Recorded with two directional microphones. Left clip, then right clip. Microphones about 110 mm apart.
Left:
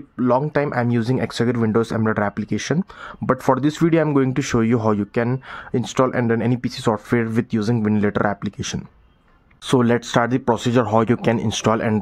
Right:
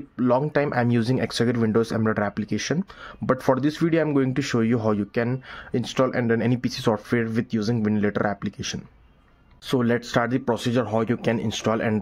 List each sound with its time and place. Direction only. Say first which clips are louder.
0.2 s speech: left 3 dB; 20° left (ahead or behind)
8.5 s speech: left 3 dB; 30° left (ahead or behind)